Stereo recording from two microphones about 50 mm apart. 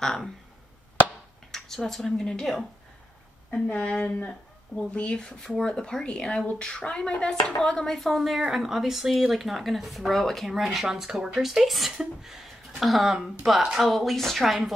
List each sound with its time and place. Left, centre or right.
1.5 s a woman's voice: centre
3.4 s speech: left; by 13.8 s centre
13.8 s speech: centre